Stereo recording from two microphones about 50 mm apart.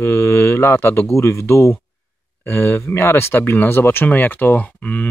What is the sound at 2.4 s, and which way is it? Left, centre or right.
Speech, left.